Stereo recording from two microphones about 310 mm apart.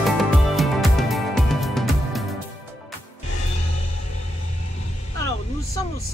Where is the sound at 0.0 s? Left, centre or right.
Centre.